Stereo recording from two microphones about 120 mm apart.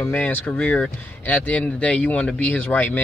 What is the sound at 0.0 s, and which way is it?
Speech, 15° left (ahead or behind).